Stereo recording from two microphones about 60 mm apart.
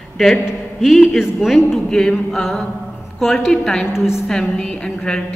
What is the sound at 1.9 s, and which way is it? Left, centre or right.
A woman's voice, centre.